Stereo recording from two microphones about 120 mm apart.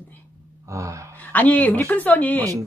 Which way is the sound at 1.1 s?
15° left (ahead or behind).